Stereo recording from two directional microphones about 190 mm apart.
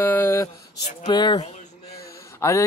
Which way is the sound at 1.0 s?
25° left (ahead or behind).